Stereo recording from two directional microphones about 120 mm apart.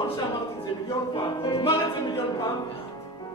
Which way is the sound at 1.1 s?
40° left (ahead or behind).